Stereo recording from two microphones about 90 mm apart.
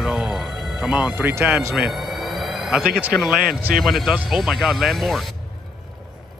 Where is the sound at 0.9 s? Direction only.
20° right (ahead or behind).